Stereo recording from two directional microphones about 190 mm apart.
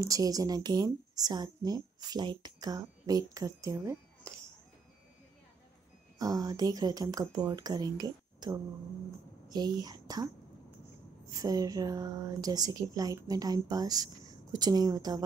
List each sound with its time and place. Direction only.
0.0 s a woman's voice: 20° right (ahead or behind)
6.1 s a woman's voice: 20° right (ahead or behind)
11.3 s a woman's voice: 20° right (ahead or behind)